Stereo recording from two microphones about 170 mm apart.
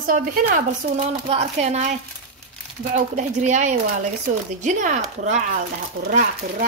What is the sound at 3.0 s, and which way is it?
A woman's voice, 45° right (ahead or behind).